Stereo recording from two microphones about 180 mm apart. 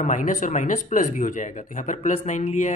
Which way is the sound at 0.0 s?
45° left (ahead or behind).